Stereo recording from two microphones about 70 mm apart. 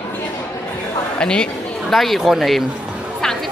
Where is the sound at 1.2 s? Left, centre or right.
Centre.